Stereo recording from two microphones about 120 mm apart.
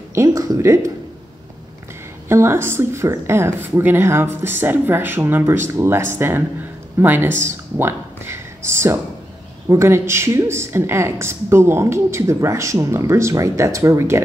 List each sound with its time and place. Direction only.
0.1 s speech: 25° right (ahead or behind)
2.2 s a woman's voice: 20° right (ahead or behind)
7.4 s a sound: 20° right (ahead or behind)
9.7 s a woman's voice: 20° right (ahead or behind)